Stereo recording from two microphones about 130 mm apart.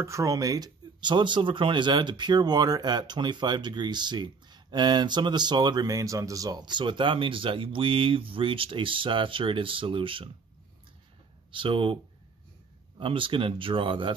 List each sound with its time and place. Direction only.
0.0 s speech: 25° right (ahead or behind); by 10.3 s 40° right (ahead or behind)
11.5 s speech: 45° right (ahead or behind)